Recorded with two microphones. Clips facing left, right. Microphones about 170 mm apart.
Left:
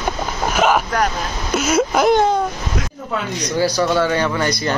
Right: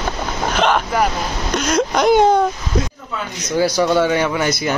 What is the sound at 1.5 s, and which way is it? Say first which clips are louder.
Speech: left 1 dB; 5° left (ahead or behind).